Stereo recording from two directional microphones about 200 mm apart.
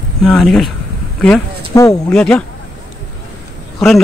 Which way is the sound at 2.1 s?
5° left (ahead or behind).